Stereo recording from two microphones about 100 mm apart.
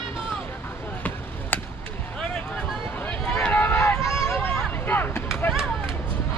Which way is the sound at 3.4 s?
15° left (ahead or behind).